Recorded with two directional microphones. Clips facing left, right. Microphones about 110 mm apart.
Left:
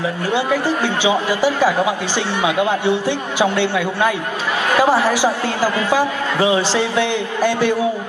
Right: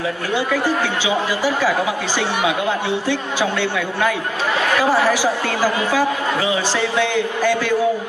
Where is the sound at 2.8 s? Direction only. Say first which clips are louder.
Left 3 dB; 15° left (ahead or behind).